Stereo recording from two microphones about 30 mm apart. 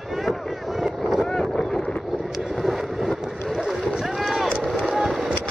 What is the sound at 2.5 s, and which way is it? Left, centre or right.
Vehicle, centre.